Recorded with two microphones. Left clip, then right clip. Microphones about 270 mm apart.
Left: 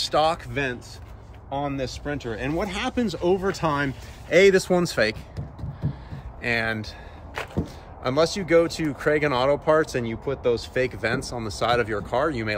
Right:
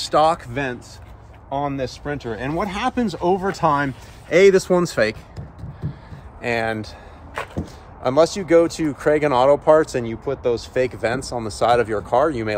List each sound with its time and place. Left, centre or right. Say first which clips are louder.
0.0 s speech: right 5 dB; centre
6.4 s speech: right 3 dB; centre